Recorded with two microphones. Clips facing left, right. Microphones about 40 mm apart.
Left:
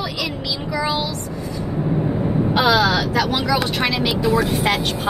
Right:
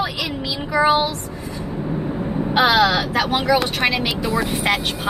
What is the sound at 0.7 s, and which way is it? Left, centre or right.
Child singing, right.